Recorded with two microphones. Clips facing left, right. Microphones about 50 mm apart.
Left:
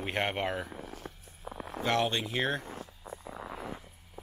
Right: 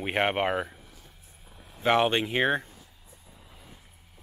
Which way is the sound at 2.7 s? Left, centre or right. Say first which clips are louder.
Left 11 dB; left.